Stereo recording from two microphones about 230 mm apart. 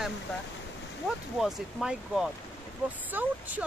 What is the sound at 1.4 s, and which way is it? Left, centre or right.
Speech, centre.